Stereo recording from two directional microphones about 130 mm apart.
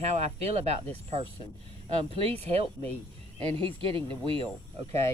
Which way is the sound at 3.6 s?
45° right (ahead or behind).